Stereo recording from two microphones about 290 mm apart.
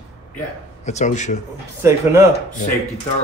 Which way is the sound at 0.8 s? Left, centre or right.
Left.